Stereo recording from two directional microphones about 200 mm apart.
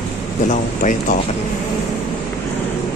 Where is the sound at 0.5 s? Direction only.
40° left (ahead or behind).